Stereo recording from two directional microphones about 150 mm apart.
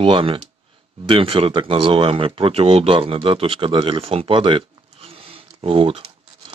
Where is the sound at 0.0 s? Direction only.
35° right (ahead or behind).